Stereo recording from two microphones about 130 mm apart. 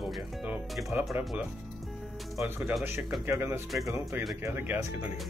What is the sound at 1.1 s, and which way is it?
Music, 15° right (ahead or behind).